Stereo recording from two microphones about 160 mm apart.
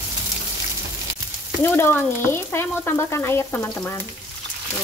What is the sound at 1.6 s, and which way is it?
Frying, 10° left (ahead or behind).